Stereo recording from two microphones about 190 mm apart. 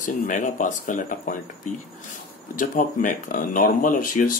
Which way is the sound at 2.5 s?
45° left (ahead or behind).